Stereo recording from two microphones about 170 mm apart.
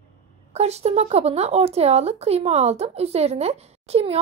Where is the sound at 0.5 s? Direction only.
40° right (ahead or behind).